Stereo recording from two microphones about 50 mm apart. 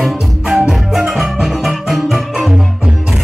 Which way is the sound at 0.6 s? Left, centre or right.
Centre.